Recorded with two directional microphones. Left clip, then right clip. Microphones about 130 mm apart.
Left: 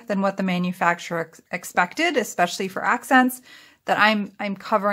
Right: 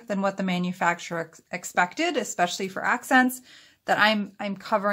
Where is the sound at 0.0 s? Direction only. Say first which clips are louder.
Left 3 dB; 30° left (ahead or behind).